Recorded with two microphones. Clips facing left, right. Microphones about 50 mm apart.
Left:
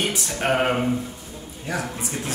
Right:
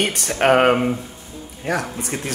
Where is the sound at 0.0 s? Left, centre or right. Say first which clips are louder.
Right 3 dB; right.